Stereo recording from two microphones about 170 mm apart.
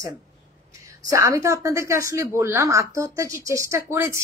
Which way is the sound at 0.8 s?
20° right (ahead or behind).